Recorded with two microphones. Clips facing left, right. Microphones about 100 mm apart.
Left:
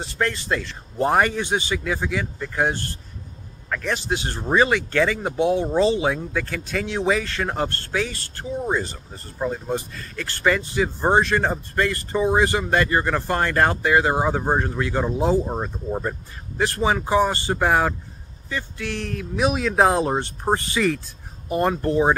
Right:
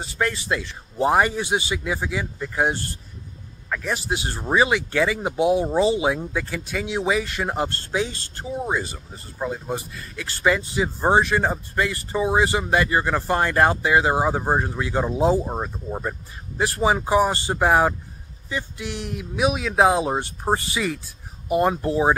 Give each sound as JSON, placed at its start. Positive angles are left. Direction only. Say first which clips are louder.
{"t": 0.0, "sound": "speech", "louder": "even", "side_deg": -10}
{"t": 15.4, "sound": "speech", "louder": "left 1 dB", "side_deg": -5}
{"t": 16.5, "sound": "speech", "louder": "right 1 dB", "side_deg": -15}